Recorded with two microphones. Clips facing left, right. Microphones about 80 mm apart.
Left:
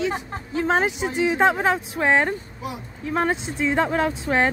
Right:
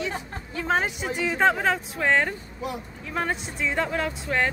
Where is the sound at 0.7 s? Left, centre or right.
Left.